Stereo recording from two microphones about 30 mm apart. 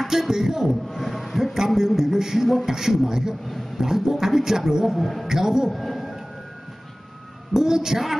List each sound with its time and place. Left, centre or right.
0.1 s a man's voice: centre
0.9 s a sound: centre
1.8 s a man's voice: centre
3.4 s a man's voice: centre
3.8 s a man's voice: centre
4.9 s a man's voice: centre
5.2 s a man's voice: centre
5.7 s music: centre
7.5 s a man's voice: centre